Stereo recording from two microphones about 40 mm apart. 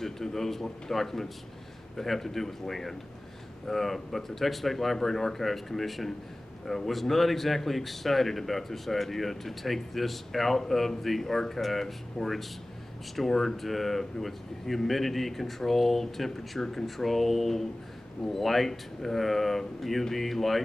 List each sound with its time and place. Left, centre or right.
0.0 s a man's voice: centre